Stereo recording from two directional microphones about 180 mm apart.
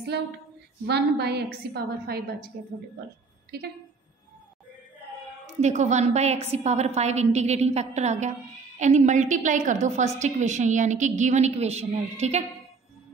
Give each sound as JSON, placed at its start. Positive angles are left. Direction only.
{"t": 0.1, "sound": "female singing", "side_deg": -65}
{"t": 0.8, "sound": "a woman's voice", "side_deg": -65}
{"t": 3.5, "sound": "a woman's voice", "side_deg": -60}
{"t": 5.6, "sound": "a woman's voice", "side_deg": -40}